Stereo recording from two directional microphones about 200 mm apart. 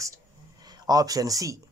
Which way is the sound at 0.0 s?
15° right (ahead or behind).